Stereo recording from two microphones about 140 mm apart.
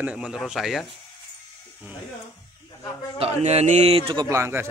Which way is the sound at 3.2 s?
50° right (ahead or behind).